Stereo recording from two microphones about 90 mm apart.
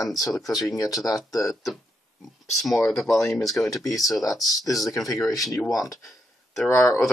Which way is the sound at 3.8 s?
40° left (ahead or behind).